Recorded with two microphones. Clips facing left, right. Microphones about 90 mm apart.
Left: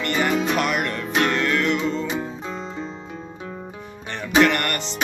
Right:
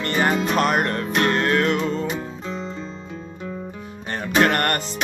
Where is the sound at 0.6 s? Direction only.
40° right (ahead or behind).